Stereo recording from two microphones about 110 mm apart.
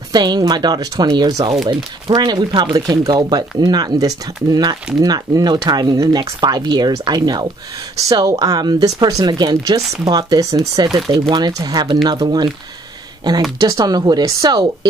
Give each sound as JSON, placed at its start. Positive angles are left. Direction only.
{"t": 0.1, "sound": "speech", "side_deg": -40}
{"t": 13.6, "sound": "speech", "side_deg": -35}